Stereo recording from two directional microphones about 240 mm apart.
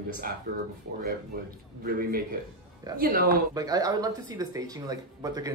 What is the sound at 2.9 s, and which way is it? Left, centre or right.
Speech, right.